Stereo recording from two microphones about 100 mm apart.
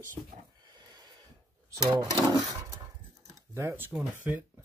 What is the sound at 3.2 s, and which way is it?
Speech, 25° right (ahead or behind).